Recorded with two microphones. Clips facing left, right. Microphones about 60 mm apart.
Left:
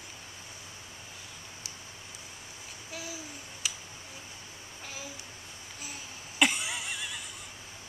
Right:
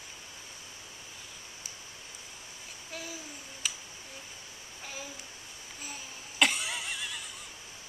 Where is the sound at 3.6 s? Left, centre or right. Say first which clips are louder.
Even; centre.